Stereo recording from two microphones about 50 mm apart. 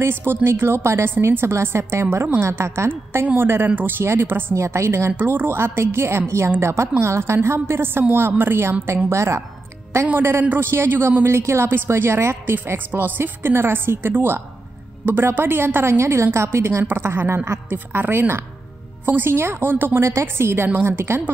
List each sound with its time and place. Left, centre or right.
0.0 s a woman's voice: right
3.3 s a woman's voice: right
4.0 s a woman's voice: right
4.6 s a woman's voice: right
5.1 s a woman's voice: right
8.8 s a woman's voice: right
10.6 s a woman's voice: right
12.6 s a woman's voice: right
16.9 s a woman's voice: right
17.7 s a woman's voice: right
19.3 s a woman's voice: right
20.0 s a woman's voice: right